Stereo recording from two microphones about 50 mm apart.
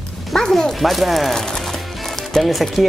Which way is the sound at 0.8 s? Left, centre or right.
Centre.